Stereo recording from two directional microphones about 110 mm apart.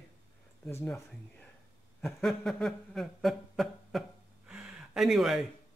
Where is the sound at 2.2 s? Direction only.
5° left (ahead or behind).